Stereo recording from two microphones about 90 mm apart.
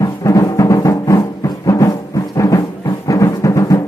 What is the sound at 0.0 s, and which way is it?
Music, 40° left (ahead or behind).